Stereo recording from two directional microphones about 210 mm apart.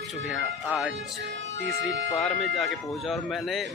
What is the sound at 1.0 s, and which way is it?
Speech, 55° right (ahead or behind).